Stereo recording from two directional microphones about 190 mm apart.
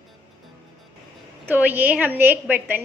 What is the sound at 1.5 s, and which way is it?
A woman's voice, 10° right (ahead or behind).